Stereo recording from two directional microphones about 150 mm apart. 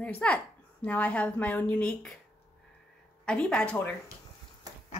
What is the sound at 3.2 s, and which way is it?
Speech, 5° left (ahead or behind).